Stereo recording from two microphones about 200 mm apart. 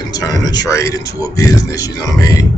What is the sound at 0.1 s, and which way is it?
A man's voice, 20° left (ahead or behind).